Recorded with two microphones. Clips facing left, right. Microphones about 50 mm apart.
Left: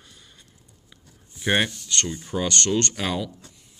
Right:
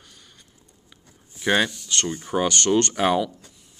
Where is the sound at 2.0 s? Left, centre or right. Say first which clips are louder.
Right 4 dB; right.